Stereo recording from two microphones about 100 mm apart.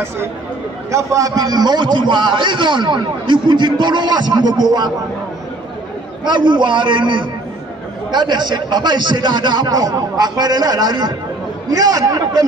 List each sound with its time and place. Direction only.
0.9 s a man's voice: 35° right (ahead or behind)
6.2 s a man's voice: 50° right (ahead or behind)